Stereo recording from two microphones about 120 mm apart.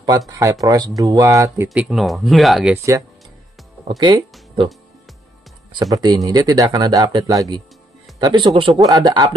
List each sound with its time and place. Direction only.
0.3 s speech: 25° right (ahead or behind)
1.7 s speech: 5° right (ahead or behind)
2.7 s speech: 25° right (ahead or behind)
5.7 s speech: 35° right (ahead or behind)
8.7 s speech: 30° right (ahead or behind)